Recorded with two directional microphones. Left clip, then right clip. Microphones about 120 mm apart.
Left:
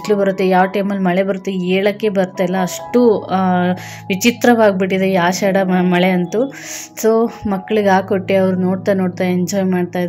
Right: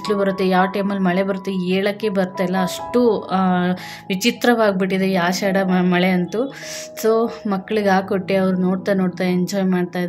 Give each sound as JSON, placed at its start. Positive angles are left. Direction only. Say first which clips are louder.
{"t": 0.1, "sound": "speech", "louder": "left 5 dB", "side_deg": 25}